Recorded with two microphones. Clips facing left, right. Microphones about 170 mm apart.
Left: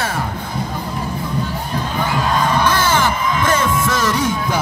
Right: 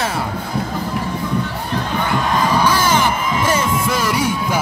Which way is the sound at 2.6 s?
10° right (ahead or behind).